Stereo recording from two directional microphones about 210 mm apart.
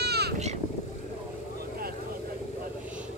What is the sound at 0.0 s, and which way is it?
Boat, 50° right (ahead or behind).